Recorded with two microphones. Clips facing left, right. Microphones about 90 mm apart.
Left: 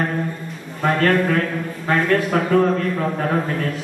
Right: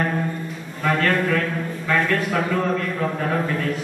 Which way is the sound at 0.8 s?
40° left (ahead or behind).